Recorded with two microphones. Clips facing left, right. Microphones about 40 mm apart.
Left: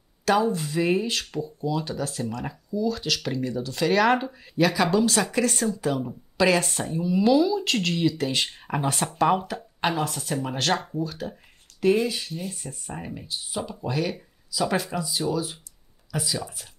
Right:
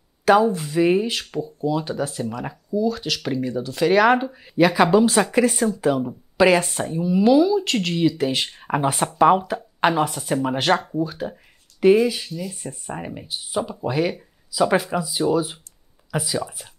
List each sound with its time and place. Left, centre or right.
0.4 s speech: centre
4.6 s speech: right
9.8 s speech: right
12.3 s speech: left
12.6 s speech: right
13.5 s speech: centre